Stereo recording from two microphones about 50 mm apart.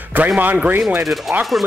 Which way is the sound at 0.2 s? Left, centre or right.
Right.